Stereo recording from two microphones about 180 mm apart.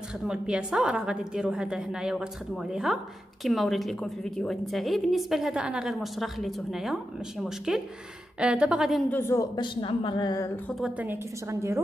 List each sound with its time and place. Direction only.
0.3 s a woman's voice: 5° right (ahead or behind)
9.1 s a woman's voice: 15° left (ahead or behind)
10.8 s a woman's voice: 10° right (ahead or behind)